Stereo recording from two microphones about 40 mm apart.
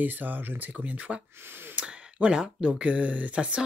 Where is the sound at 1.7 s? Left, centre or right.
Right.